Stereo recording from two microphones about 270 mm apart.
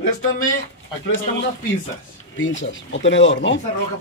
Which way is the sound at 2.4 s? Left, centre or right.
Left.